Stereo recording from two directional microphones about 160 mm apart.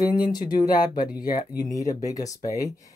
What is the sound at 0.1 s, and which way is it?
Speech, 25° left (ahead or behind).